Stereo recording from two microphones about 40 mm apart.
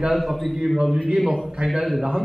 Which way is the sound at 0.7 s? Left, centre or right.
Centre.